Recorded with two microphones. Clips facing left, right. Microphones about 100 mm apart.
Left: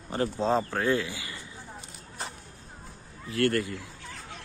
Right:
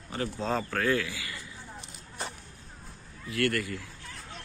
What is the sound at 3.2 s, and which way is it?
Speech, 30° left (ahead or behind).